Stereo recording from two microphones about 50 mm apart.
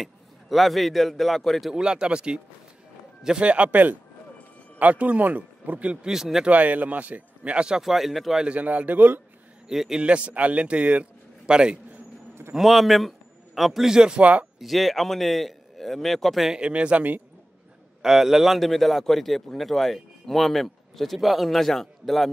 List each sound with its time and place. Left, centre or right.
0.0 s a man's voice: centre
1.7 s speech: centre
6.0 s speech: centre
6.4 s speech: right
7.8 s a man's voice: centre
8.5 s speech: right
9.7 s speech: centre
10.0 s a man's voice: right
12.5 s a man's voice: centre
14.4 s a man's voice: centre
16.5 s speech: right
18.0 s a man's voice: centre